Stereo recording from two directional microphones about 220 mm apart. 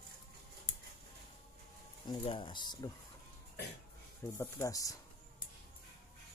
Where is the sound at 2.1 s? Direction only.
20° left (ahead or behind).